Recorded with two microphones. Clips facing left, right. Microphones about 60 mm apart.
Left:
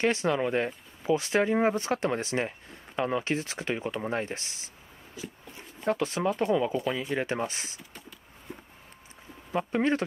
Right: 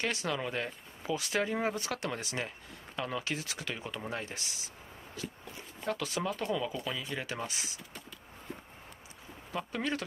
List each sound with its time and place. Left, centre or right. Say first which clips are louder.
0.0 s speech: left 8 dB; left
5.2 s a sound: left 1 dB; centre
5.9 s speech: left 7 dB; left
9.5 s speech: left 8 dB; left